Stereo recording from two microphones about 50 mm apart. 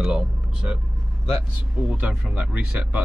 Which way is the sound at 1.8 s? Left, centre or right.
Right.